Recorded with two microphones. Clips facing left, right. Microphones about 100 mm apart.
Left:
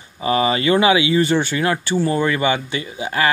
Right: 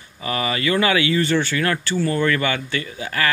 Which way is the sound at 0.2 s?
25° left (ahead or behind).